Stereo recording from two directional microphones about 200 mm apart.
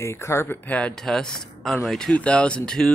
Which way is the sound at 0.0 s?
15° left (ahead or behind).